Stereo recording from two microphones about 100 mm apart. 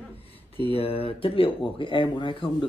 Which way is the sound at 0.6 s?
70° left (ahead or behind).